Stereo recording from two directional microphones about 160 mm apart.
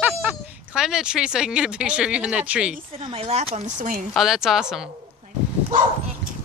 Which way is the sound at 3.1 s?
40° right (ahead or behind).